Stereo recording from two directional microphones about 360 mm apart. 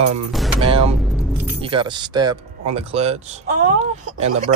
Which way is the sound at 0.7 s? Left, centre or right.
Centre.